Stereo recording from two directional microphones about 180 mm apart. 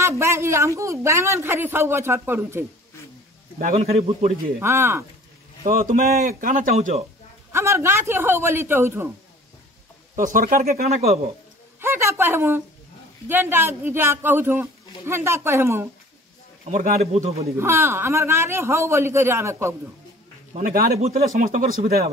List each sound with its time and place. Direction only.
0.0 s speech: 15° right (ahead or behind)
3.7 s a man's voice: 35° right (ahead or behind)
4.6 s speech: 15° right (ahead or behind)
5.7 s speech: 45° right (ahead or behind)
7.5 s speech: 15° right (ahead or behind)
10.1 s speech: 45° right (ahead or behind)
11.8 s speech: 15° right (ahead or behind)
16.6 s a man's voice: 40° right (ahead or behind)
17.6 s speech: 15° right (ahead or behind)
20.5 s speech: 50° right (ahead or behind)
21.0 s a man's voice: 35° right (ahead or behind)
21.4 s speech: 45° right (ahead or behind)